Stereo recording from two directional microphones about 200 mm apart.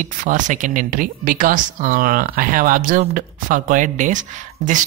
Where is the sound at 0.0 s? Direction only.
40° right (ahead or behind).